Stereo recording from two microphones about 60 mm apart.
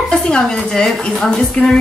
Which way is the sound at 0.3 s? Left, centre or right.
Centre.